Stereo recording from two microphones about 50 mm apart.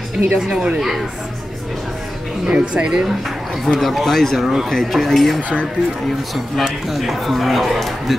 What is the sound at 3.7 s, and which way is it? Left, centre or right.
A man's voice, centre.